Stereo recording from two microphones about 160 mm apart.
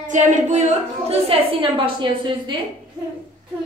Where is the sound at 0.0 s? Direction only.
50° right (ahead or behind); by 2.5 s 30° right (ahead or behind).